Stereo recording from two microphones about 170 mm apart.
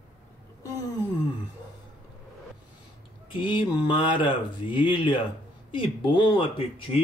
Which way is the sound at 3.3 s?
30° left (ahead or behind).